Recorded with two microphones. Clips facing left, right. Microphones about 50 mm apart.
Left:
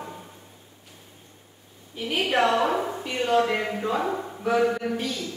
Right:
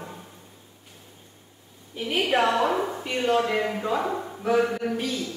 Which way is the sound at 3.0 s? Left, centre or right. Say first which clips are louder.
Left 2 dB; centre.